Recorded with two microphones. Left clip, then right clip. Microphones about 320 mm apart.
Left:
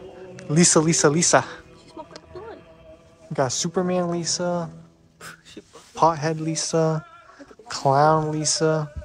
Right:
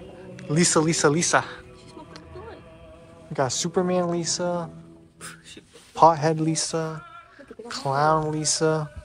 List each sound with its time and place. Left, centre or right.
0.5 s speech: centre
2.3 s a sound: left
3.3 s speech: centre
5.9 s speech: centre
7.8 s speech: centre